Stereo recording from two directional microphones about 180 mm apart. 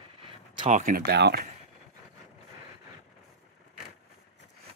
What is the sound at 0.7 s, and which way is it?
Speech, 45° right (ahead or behind).